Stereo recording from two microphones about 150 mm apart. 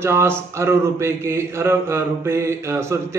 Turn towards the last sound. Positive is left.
turn(degrees=-20)  # may be behind; listen again after turning